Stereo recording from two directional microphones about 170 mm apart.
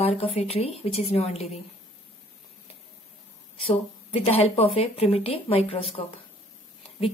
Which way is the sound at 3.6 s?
35° left (ahead or behind).